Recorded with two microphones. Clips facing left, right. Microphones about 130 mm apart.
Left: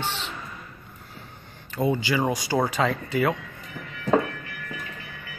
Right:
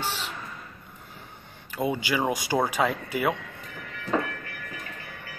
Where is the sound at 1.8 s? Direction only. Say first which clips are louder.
Left 3 dB; 15° right (ahead or behind).